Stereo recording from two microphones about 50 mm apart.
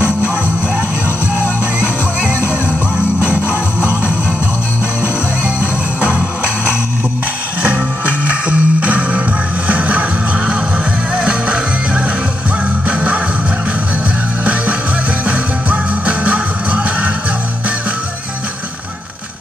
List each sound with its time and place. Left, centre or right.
3.2 s music: right
8.3 s music: right
14.4 s music: right